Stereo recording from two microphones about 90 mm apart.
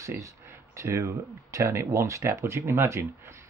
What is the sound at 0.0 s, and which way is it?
Speech, 35° right (ahead or behind).